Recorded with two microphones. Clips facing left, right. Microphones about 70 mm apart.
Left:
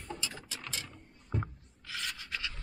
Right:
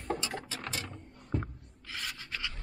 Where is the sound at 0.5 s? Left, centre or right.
Right.